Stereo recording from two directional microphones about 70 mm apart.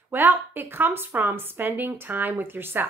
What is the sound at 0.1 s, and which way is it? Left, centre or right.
A woman's voice, right.